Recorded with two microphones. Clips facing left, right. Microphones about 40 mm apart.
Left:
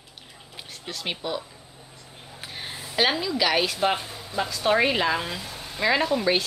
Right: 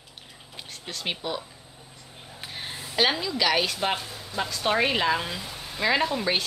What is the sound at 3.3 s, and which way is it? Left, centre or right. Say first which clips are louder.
Speech: left 1 dB; centre.